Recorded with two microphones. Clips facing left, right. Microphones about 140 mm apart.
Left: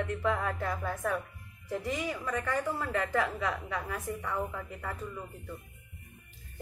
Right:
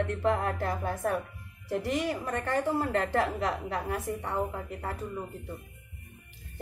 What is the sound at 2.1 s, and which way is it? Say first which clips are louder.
Speech: right 1 dB; 30° right (ahead or behind).